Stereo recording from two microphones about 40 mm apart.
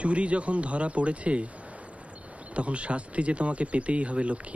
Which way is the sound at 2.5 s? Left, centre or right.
Right.